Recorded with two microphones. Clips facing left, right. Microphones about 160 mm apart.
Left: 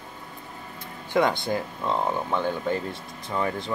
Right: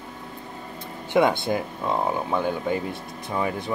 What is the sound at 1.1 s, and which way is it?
Speech, 20° right (ahead or behind).